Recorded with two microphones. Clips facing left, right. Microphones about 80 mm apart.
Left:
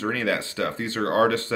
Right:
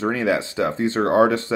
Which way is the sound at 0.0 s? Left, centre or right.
Centre.